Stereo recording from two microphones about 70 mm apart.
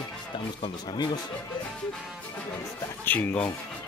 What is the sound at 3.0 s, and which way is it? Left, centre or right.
Speech, left.